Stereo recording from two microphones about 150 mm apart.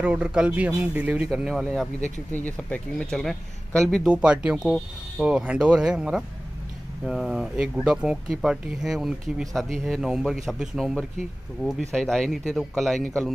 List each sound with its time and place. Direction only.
0.0 s speech: 5° right (ahead or behind)
2.0 s speech: 50° left (ahead or behind)
2.3 s speech: 10° left (ahead or behind)